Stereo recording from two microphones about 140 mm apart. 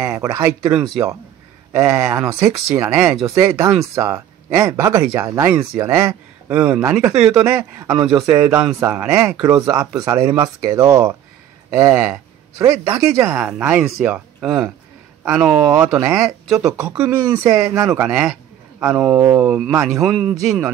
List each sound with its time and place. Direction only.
0.0 s speech: 15° right (ahead or behind)
0.7 s speech: 5° right (ahead or behind)
1.7 s speech: 20° right (ahead or behind)
3.3 s speech: 25° right (ahead or behind)
6.8 s speech: 20° right (ahead or behind)
7.1 s speech: 5° right (ahead or behind)
8.0 s speech: 5° right (ahead or behind)
9.6 s speech: 25° right (ahead or behind)
18.0 s speech: 5° right (ahead or behind)
19.1 s speech: 20° right (ahead or behind)
19.4 s speech: 5° right (ahead or behind)